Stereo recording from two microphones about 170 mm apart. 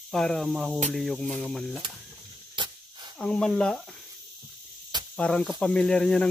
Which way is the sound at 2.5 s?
25° right (ahead or behind).